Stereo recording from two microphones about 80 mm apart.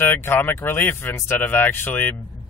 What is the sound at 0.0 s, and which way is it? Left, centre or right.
Speech, left.